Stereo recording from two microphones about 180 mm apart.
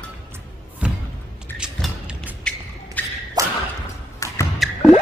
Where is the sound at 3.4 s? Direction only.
20° right (ahead or behind).